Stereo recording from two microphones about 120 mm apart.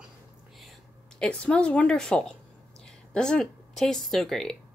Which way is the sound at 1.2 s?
10° left (ahead or behind).